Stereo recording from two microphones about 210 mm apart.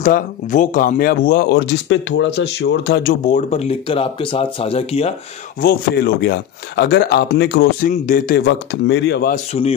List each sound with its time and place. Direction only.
0.0 s speech: 35° left (ahead or behind); by 3.2 s 55° left (ahead or behind)
3.3 s speech: 35° left (ahead or behind)
5.6 s speech: 45° left (ahead or behind)
9.3 s speech: 30° left (ahead or behind)